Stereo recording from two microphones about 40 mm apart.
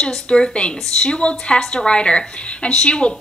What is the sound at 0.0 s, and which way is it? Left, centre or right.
A woman's voice, centre.